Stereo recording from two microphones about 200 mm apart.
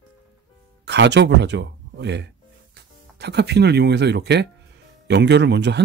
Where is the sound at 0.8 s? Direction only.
60° right (ahead or behind).